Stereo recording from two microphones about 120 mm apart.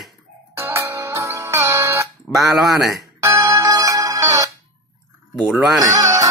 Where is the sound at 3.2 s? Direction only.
25° right (ahead or behind).